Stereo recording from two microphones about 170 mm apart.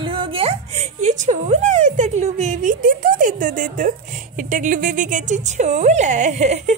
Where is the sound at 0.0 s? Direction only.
30° right (ahead or behind); by 3.9 s 50° right (ahead or behind).